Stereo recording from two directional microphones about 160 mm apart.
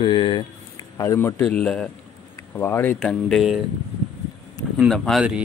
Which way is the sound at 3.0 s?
Centre (ahead or behind).